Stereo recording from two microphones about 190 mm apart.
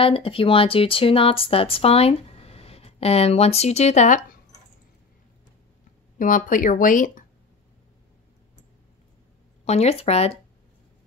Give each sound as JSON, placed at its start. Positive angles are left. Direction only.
{"t": 0.0, "sound": "speech", "side_deg": 30}
{"t": 6.1, "sound": "speech", "side_deg": 45}
{"t": 9.7, "sound": "speech", "side_deg": 35}